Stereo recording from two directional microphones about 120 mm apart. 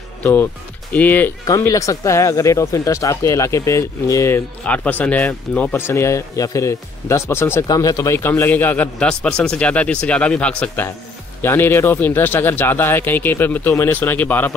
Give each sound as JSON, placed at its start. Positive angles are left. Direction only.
{"t": 0.2, "sound": "speech", "side_deg": 15}
{"t": 1.7, "sound": "speech", "side_deg": 25}
{"t": 4.6, "sound": "speech", "side_deg": 15}